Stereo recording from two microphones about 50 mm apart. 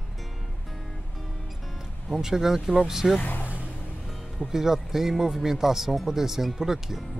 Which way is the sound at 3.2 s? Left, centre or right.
Left.